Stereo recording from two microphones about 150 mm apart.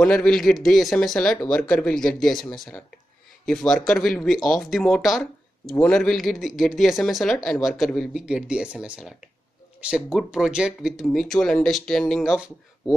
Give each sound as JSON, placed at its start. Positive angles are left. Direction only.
{"t": 0.0, "sound": "speech", "side_deg": 5}